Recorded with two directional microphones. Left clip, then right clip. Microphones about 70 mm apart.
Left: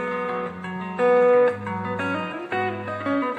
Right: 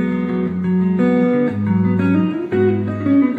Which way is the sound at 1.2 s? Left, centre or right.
Centre.